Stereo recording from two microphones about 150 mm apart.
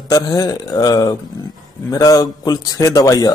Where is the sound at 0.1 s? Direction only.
25° left (ahead or behind).